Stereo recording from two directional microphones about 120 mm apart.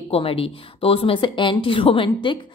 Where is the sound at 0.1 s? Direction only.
55° left (ahead or behind).